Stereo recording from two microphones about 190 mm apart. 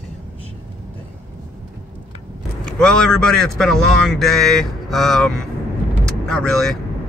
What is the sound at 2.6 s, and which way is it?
A man's voice, 5° left (ahead or behind).